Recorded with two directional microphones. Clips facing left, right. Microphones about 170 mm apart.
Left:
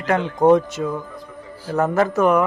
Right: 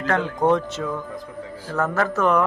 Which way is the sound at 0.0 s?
15° left (ahead or behind).